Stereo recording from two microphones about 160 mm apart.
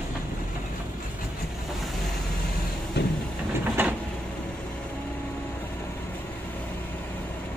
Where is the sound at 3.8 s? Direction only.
10° right (ahead or behind).